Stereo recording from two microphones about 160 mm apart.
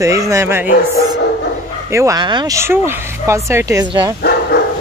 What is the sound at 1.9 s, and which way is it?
Speech, 20° right (ahead or behind).